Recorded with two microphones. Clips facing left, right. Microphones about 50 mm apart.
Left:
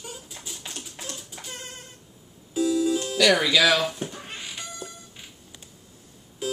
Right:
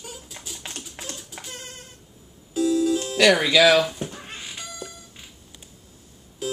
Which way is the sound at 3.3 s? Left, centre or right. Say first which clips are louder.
Right 4 dB; right.